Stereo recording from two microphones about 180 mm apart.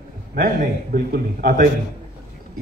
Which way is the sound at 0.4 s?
55° right (ahead or behind).